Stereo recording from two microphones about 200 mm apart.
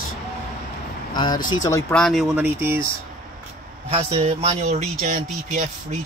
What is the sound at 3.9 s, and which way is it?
A man's voice, 30° right (ahead or behind).